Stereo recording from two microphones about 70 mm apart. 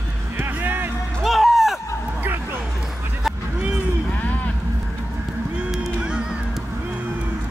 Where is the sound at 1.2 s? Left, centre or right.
Centre.